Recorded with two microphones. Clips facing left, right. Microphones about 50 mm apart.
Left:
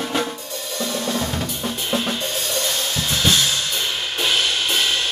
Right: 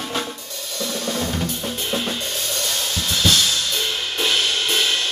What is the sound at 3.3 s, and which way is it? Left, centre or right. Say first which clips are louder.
Drum kit: even; left.